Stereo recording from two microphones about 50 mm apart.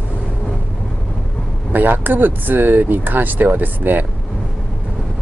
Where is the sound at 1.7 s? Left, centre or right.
Right.